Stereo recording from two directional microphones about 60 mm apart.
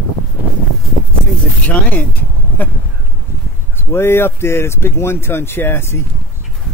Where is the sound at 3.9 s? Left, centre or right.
Left.